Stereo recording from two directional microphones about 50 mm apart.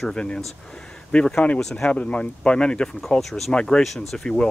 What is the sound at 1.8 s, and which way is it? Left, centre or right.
Speech, left.